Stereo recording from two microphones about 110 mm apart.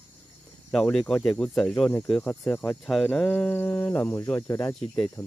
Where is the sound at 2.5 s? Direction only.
15° left (ahead or behind).